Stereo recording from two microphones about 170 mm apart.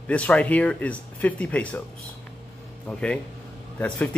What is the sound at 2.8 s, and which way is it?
Speech, 5° left (ahead or behind).